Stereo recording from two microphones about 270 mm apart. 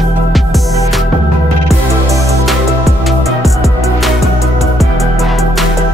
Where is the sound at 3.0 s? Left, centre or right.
Centre.